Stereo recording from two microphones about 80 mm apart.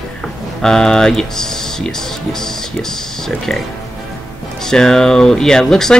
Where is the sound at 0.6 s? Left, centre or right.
Centre.